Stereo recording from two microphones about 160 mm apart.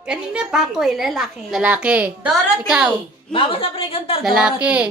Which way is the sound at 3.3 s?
35° left (ahead or behind).